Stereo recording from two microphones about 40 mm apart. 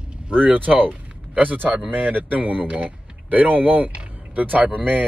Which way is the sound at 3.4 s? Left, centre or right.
Right.